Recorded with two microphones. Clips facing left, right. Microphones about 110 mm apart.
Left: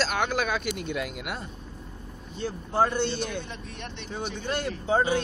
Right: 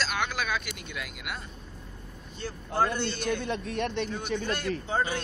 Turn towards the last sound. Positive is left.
turn(degrees=15)  # may be behind; listen again after turning